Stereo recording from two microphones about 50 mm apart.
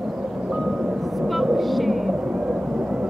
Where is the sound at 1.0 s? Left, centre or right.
Centre.